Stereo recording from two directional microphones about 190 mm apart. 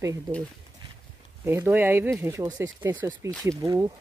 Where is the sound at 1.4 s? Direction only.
10° right (ahead or behind).